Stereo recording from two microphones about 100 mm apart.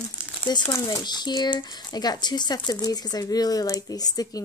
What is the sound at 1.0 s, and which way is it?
A woman's voice, 45° left (ahead or behind).